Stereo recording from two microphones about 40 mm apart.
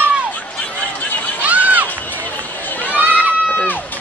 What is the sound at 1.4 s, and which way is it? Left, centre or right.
Run, right.